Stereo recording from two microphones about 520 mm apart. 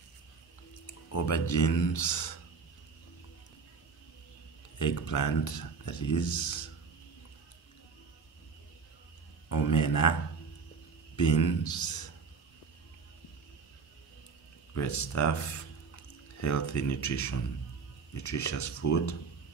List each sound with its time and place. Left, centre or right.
0.8 s speech: left
4.7 s speech: left
9.5 s a man's voice: left
11.1 s a man's voice: left
14.7 s speech: left